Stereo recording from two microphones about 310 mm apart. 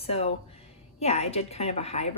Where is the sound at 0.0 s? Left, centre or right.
Centre.